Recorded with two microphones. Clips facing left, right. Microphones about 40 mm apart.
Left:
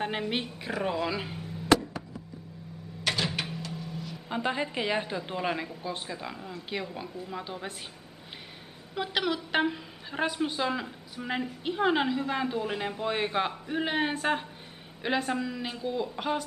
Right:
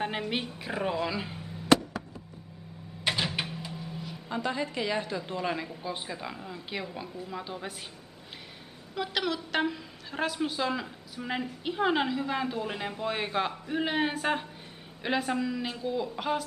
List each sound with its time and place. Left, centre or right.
0.0 s speech: centre
3.0 s cupboard open or close: centre
3.5 s a sound: centre
4.3 s a woman's voice: left
5.8 s speech: centre
8.9 s a woman's voice: centre